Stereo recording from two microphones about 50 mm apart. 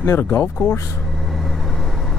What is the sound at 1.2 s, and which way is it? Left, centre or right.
Vehicle, centre.